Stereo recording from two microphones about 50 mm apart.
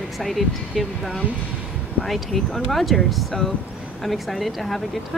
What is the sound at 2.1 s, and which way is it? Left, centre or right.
Speech, centre.